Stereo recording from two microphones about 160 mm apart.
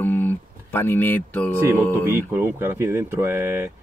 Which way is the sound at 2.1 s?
15° right (ahead or behind).